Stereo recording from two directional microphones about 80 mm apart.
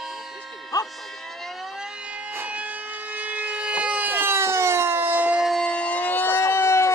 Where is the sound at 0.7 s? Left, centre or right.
Left.